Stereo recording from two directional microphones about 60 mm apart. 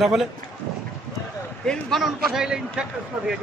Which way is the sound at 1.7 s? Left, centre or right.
Centre.